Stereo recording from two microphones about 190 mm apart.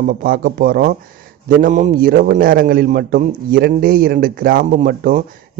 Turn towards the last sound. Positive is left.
turn(degrees=-45)  # may be behind; listen again after turning